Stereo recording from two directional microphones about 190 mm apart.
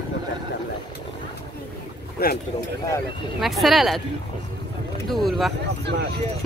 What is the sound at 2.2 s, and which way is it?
Speech, 55° left (ahead or behind).